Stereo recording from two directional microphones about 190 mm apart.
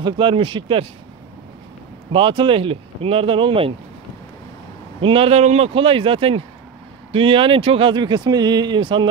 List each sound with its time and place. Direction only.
0.0 s speech: 25° right (ahead or behind)
2.1 s speech: 25° right (ahead or behind)
5.0 s speech: 30° right (ahead or behind)